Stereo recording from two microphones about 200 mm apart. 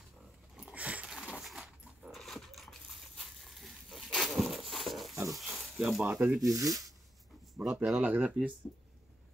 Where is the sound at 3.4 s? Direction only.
Centre (ahead or behind).